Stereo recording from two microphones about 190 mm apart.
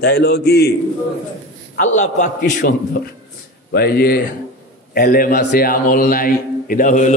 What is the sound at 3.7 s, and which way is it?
A man's voice, 55° left (ahead or behind).